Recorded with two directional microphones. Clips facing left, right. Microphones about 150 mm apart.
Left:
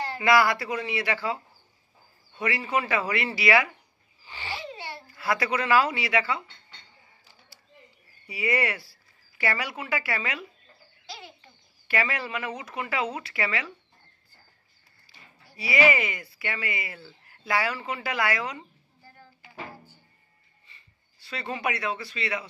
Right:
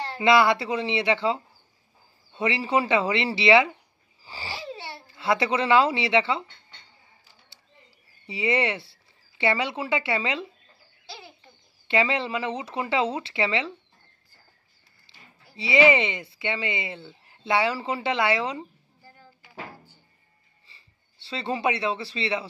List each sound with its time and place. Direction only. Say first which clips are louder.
0.2 s speech: right 3 dB; 25° right (ahead or behind)
4.2 s a sound: even; 35° right (ahead or behind)
8.3 s speech: right 3 dB; 25° right (ahead or behind)
11.9 s speech: right 5 dB; 25° right (ahead or behind)
15.0 s speech: even; 25° right (ahead or behind)
20.6 s speech: even; 30° right (ahead or behind)